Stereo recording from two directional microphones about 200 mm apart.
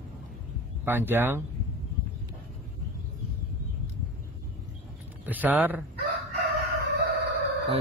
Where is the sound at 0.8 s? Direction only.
10° right (ahead or behind).